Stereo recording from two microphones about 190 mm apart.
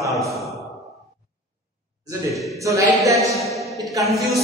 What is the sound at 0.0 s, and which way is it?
Sigh, 15° right (ahead or behind).